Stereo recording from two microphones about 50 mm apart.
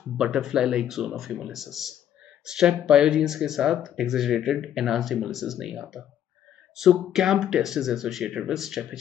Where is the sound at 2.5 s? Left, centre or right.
Centre.